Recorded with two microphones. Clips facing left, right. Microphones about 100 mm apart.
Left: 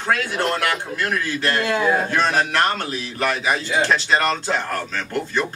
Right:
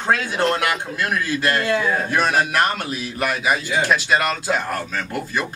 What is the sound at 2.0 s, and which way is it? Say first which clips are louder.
Speech: right 1 dB; 10° right (ahead or behind).